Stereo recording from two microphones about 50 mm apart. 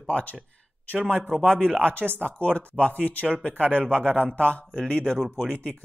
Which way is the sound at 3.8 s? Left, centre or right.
Right.